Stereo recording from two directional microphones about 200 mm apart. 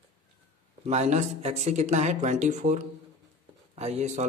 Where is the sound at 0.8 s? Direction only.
35° right (ahead or behind).